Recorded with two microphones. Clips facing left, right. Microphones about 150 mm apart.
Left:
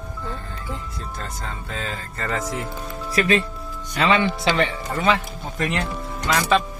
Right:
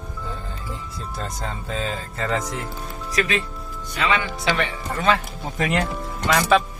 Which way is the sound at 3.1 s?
35° left (ahead or behind).